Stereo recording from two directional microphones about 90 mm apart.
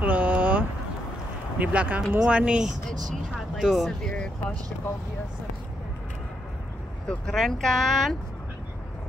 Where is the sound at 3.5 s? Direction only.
Centre (ahead or behind).